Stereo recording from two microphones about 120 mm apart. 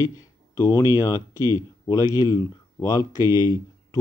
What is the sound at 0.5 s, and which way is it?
Speech, 25° left (ahead or behind).